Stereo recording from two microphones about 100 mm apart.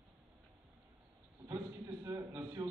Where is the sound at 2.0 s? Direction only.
35° right (ahead or behind).